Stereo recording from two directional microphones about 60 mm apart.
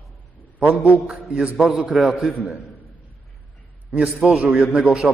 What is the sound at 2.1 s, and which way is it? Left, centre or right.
Speech, centre.